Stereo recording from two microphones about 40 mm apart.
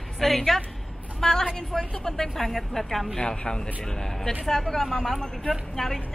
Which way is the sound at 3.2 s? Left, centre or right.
Centre.